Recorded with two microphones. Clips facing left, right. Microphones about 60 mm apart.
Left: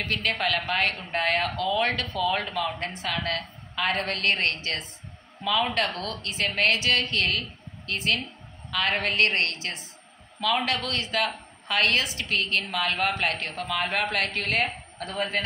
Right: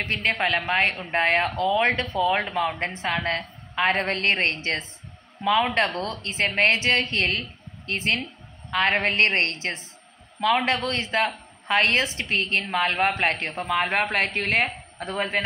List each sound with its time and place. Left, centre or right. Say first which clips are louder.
0.0 s a woman's voice: right 3 dB; right